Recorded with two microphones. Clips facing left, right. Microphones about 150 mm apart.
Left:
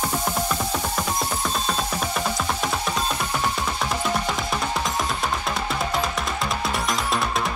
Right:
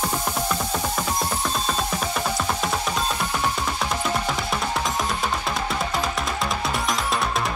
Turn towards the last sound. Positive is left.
turn(degrees=0)  # may be behind; listen again after turning